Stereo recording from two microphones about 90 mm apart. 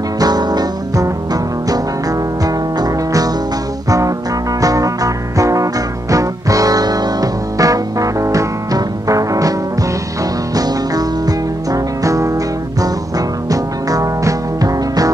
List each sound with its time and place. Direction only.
0.2 s music: 50° right (ahead or behind)
4.6 s music: 40° right (ahead or behind)
10.5 s music: 45° right (ahead or behind)
13.5 s music: 40° right (ahead or behind)